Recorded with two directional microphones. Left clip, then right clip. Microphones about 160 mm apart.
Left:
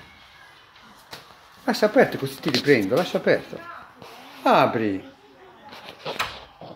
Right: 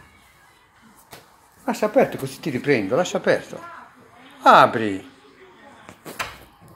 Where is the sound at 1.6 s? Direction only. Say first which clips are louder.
Even; 25° left (ahead or behind).